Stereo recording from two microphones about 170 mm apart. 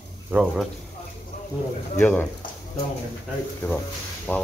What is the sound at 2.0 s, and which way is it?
Speech, 10° left (ahead or behind).